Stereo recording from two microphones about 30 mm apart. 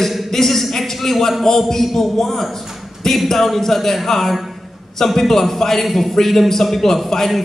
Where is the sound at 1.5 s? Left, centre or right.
Left.